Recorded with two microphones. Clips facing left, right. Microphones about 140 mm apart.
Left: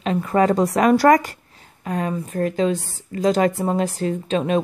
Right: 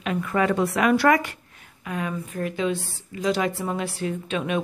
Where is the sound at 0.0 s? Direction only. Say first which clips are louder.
Left 5 dB; 35° left (ahead or behind).